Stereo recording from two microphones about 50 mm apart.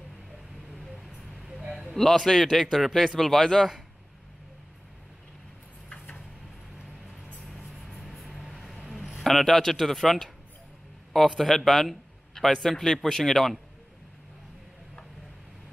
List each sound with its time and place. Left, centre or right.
0.7 s vehicle: centre
1.5 s a sound: centre
1.9 s a man's voice: centre
7.3 s music: centre
8.4 s vehicle: centre
8.9 s a man's voice: centre